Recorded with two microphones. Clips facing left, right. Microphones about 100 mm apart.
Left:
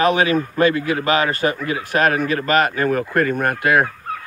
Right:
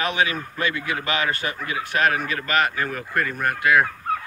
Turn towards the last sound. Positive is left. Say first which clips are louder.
# left 2 dB
turn(degrees=45)  # may be behind; listen again after turning